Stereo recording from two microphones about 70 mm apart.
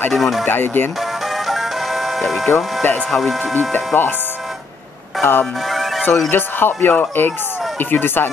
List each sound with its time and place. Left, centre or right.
0.1 s speech: centre
0.5 s speech: left
1.3 s music: centre
2.5 s speech: left
3.1 s speech: centre
3.5 s speech: left
5.2 s speech: left
5.7 s music: centre
6.3 s speech: left